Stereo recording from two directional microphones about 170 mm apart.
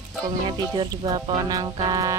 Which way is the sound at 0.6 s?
25° right (ahead or behind).